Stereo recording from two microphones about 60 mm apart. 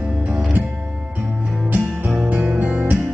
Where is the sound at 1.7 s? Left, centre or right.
Right.